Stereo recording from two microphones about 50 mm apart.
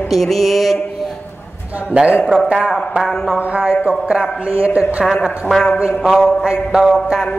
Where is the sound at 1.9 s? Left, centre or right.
Right.